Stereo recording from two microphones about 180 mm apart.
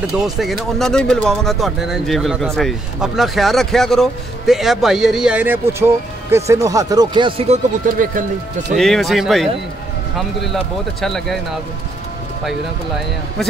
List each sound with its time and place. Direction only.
0.2 s speech: centre (ahead or behind); by 8.3 s 45° right (ahead or behind)
8.7 s speech: centre (ahead or behind)